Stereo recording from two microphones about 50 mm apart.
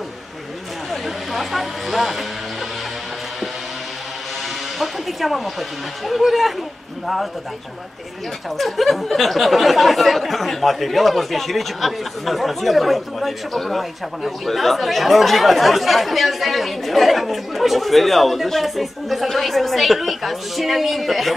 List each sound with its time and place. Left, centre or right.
1.3 s a sound: centre
4.7 s speech: centre
8.5 s speech: centre